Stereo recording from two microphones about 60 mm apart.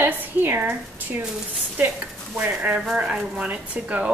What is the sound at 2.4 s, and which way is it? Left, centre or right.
Speech, right.